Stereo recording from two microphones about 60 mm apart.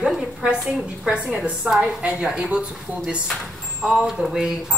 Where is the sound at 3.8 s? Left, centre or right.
Centre.